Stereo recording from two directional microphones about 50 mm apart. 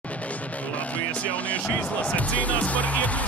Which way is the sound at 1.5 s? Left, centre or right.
Left.